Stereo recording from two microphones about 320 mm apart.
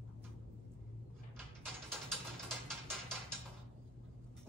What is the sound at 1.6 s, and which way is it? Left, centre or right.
Mechanisms, centre.